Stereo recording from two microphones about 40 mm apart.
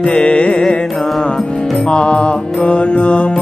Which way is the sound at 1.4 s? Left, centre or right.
Left.